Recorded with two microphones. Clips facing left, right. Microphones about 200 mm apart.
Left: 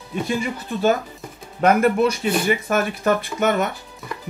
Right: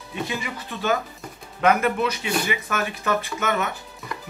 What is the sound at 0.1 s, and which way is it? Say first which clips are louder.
Speech: left 6 dB; 45° left (ahead or behind).